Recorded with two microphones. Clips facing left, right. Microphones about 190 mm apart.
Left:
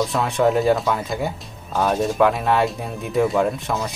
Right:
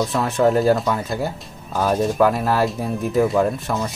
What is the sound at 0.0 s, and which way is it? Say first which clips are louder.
Speech: right 1 dB; centre (ahead or behind).